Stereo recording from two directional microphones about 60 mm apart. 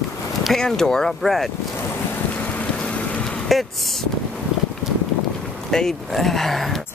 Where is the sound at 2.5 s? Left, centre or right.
Left.